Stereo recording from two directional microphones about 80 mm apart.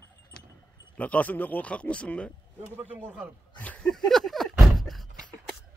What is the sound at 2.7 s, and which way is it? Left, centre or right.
Speech, right.